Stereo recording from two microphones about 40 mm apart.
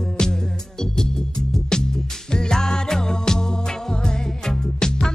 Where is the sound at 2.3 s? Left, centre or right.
Centre.